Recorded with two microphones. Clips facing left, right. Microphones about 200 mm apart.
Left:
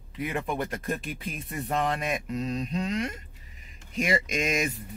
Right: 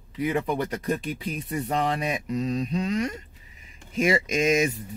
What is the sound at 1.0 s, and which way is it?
Speech, 45° left (ahead or behind).